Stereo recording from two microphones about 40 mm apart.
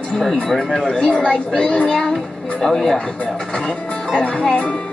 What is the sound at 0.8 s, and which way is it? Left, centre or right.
Speech, left.